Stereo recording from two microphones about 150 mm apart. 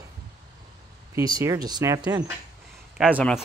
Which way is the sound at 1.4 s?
25° right (ahead or behind).